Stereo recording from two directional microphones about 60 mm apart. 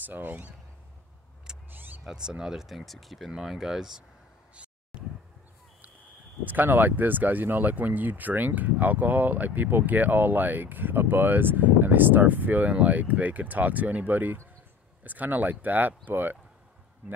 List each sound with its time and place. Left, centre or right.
0.0 s speech: right
1.7 s vehicle: right
2.0 s speech: centre
6.4 s speech: right